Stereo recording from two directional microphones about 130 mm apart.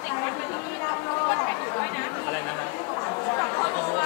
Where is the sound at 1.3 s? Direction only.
25° left (ahead or behind).